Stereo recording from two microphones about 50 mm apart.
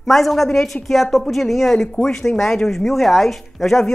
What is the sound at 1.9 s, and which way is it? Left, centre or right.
Speech, centre.